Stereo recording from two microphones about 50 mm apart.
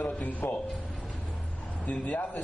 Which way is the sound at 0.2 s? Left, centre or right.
Left.